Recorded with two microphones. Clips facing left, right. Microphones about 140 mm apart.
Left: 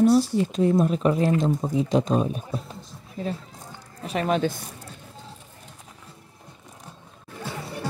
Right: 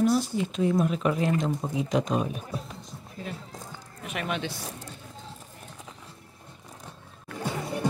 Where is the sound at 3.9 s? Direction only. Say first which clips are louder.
Left 8 dB; 35° left (ahead or behind).